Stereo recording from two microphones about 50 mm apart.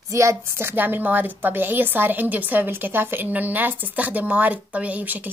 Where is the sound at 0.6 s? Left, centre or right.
Right.